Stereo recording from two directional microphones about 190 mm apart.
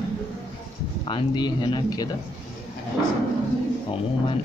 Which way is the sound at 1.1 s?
25° left (ahead or behind).